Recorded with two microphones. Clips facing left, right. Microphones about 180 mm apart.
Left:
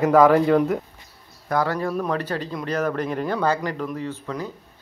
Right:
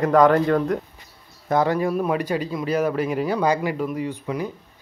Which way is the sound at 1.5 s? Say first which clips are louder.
Right 3 dB; 20° right (ahead or behind).